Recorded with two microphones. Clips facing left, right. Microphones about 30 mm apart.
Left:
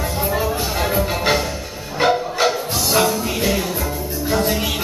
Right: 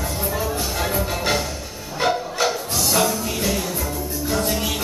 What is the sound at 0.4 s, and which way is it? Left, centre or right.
Music, centre.